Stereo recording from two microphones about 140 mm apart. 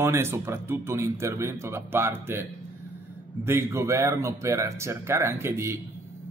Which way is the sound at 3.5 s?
20° right (ahead or behind).